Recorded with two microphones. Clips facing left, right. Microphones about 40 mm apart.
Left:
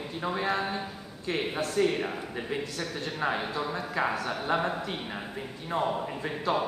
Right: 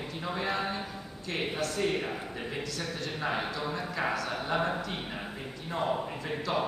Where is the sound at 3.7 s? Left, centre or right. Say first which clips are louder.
Left 2 dB; left.